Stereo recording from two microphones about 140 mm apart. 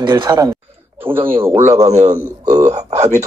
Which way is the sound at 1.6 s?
50° right (ahead or behind).